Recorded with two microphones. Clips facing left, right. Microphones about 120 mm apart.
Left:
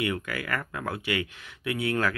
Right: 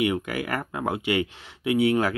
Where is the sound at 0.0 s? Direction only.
20° right (ahead or behind).